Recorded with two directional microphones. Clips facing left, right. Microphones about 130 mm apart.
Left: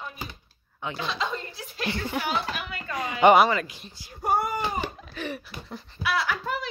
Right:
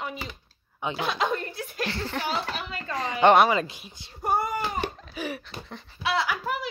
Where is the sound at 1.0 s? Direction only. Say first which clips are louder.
Right 4 dB; 55° right (ahead or behind).